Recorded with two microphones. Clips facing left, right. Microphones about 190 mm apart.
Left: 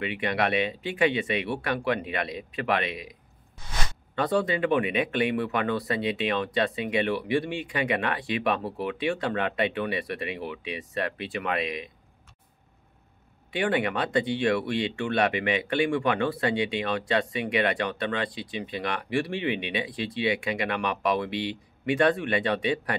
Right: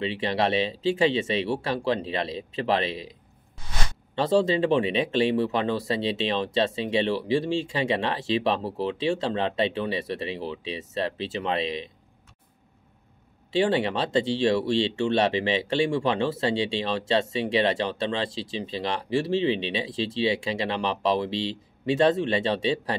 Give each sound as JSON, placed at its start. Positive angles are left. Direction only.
{"t": 0.0, "sound": "speech", "side_deg": -30}
{"t": 13.6, "sound": "speech", "side_deg": -25}